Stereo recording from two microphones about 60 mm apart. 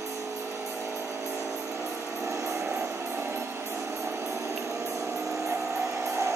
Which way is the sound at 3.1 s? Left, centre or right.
Right.